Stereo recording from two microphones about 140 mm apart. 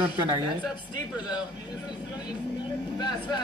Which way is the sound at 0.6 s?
35° left (ahead or behind).